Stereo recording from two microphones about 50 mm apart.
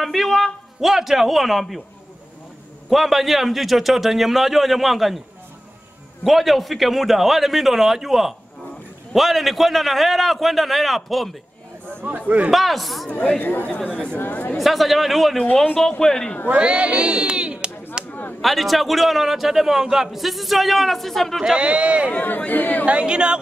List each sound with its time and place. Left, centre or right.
0.0 s a man's voice: centre
2.9 s a man's voice: centre
6.2 s a man's voice: centre
12.0 s a man's voice: right
12.4 s a man's voice: centre
13.4 s speech: left
14.6 s a man's voice: centre
16.0 s a man's voice: centre
16.4 s speech: right
18.0 s a sound: centre
18.4 s a man's voice: centre
21.5 s speech: right
22.5 s speech: left
22.8 s speech: right